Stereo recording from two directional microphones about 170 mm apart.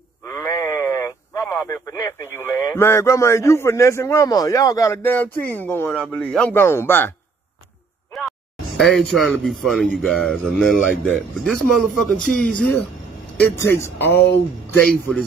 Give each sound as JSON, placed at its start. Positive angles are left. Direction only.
{"t": 0.2, "sound": "speech", "side_deg": 20}
{"t": 8.3, "sound": "a man's voice", "side_deg": 0}
{"t": 13.9, "sound": "speech", "side_deg": 10}